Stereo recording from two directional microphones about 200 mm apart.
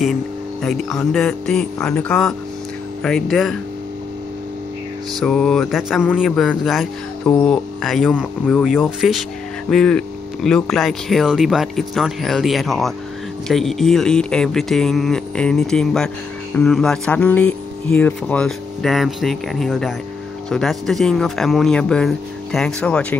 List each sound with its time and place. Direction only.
0.0 s speech: centre (ahead or behind)
5.2 s speech: centre (ahead or behind)